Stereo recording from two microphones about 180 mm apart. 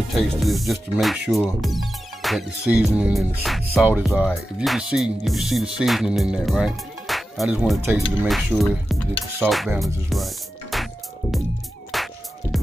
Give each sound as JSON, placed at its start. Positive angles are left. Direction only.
{"t": 0.1, "sound": "speech", "side_deg": 0}
{"t": 10.0, "sound": "music", "side_deg": 0}
{"t": 11.9, "sound": "music", "side_deg": 0}